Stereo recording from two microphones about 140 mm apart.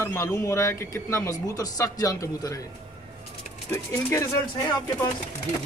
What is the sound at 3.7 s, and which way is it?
Speech, 20° left (ahead or behind).